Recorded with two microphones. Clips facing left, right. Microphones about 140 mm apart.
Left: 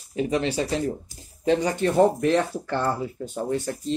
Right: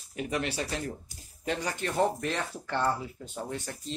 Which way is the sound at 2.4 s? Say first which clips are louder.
Left 6 dB; 40° left (ahead or behind).